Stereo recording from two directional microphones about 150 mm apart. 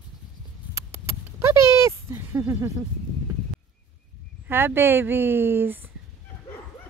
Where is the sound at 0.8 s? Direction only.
20° right (ahead or behind).